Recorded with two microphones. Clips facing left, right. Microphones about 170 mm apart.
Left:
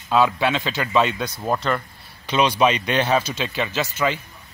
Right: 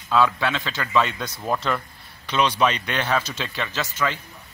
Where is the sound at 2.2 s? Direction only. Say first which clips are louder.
Left 3 dB; 15° left (ahead or behind).